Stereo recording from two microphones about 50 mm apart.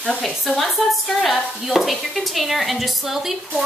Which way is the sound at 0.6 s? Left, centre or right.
Centre.